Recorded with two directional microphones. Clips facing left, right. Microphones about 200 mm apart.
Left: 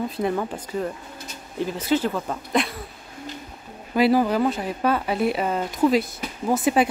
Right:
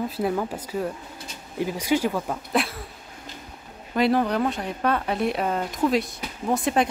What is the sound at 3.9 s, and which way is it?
Speech, 5° left (ahead or behind).